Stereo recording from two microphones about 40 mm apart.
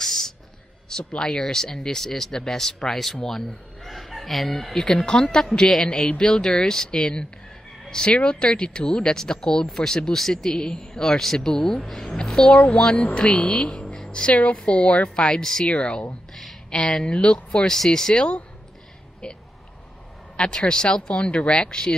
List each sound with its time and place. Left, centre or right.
0.0 s a sound: centre
0.8 s a man's voice: centre
12.1 s a sound: centre
12.5 s speech: left
13.9 s a sound: left
14.6 s speech: left
15.2 s speech: centre
15.6 s speech: left
16.7 s speech: centre
17.1 s speech: left